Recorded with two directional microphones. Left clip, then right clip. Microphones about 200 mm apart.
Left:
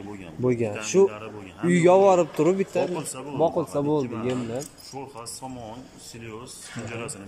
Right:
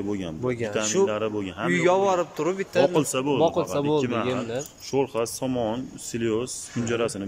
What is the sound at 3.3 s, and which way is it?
Speech, 5° left (ahead or behind).